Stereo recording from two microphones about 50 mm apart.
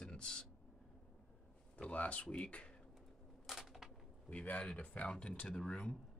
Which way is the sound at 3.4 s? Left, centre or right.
Centre.